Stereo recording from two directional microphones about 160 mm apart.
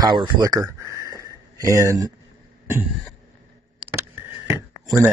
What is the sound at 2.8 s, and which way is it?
Speech, centre (ahead or behind).